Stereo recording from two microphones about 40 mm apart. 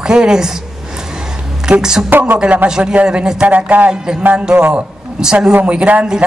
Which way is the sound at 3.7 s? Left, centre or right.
Right.